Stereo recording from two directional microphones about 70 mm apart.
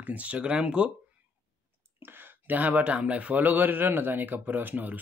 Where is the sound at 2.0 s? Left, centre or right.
Right.